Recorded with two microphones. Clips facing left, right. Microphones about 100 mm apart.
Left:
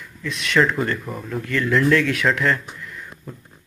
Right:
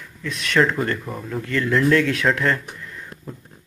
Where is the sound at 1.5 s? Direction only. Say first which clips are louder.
Even; 30° right (ahead or behind).